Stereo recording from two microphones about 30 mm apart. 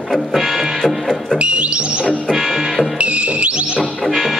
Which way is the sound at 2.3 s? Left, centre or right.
Centre.